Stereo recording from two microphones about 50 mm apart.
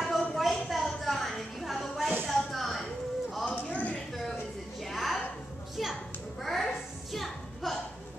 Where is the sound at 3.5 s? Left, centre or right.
Left.